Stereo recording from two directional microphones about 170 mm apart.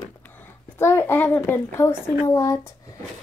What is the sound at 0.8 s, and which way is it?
A child's voice, 15° left (ahead or behind).